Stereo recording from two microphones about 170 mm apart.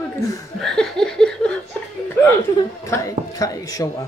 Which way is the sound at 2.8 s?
20° left (ahead or behind).